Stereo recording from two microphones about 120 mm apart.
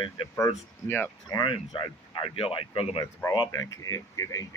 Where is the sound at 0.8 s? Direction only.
20° left (ahead or behind).